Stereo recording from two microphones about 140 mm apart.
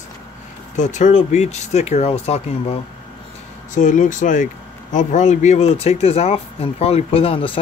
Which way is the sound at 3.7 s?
65° left (ahead or behind).